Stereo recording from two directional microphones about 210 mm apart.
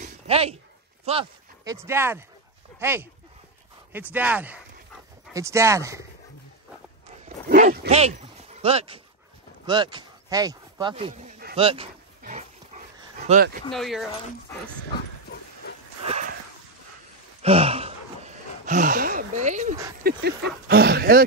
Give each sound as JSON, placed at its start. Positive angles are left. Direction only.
{"t": 0.0, "sound": "a sound", "side_deg": -30}
{"t": 1.1, "sound": "speech", "side_deg": -30}
{"t": 1.6, "sound": "speech", "side_deg": -15}
{"t": 4.1, "sound": "speech", "side_deg": -5}
{"t": 7.4, "sound": "speech", "side_deg": -40}
{"t": 12.2, "sound": "dog", "side_deg": -35}
{"t": 13.3, "sound": "speech", "side_deg": -45}
{"t": 13.7, "sound": "speech", "side_deg": 0}
{"t": 15.2, "sound": "dog", "side_deg": 50}
{"t": 17.4, "sound": "gasp", "side_deg": -30}
{"t": 20.0, "sound": "speech", "side_deg": -45}